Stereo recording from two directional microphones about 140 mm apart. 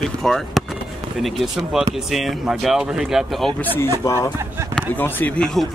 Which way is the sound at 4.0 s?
20° left (ahead or behind).